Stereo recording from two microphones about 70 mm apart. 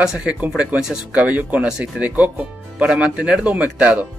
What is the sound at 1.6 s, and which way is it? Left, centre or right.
Speech, centre.